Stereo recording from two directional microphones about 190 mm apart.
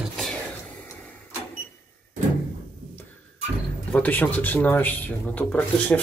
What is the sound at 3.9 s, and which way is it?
Speech, 10° left (ahead or behind).